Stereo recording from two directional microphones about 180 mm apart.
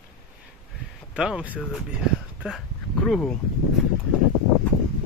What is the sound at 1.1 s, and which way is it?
Speech, 5° right (ahead or behind).